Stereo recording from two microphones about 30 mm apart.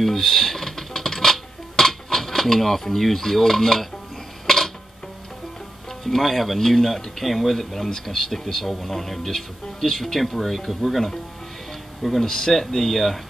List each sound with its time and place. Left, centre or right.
0.0 s a sound: centre
4.5 s music: centre
6.0 s speech: centre
8.6 s speech: centre
12.2 s speech: centre
12.5 s speech: centre